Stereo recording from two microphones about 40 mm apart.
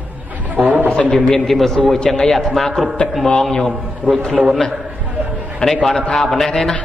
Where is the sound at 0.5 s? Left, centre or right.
Right.